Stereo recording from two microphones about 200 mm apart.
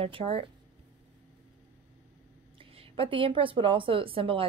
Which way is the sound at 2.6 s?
25° right (ahead or behind).